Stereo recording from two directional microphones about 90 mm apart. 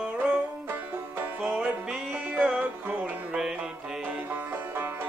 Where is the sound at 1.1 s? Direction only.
20° right (ahead or behind).